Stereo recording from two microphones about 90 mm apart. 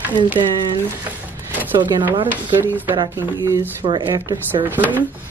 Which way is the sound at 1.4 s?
20° right (ahead or behind).